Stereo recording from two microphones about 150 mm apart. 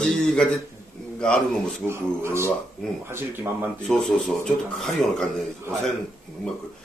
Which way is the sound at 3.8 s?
5° left (ahead or behind).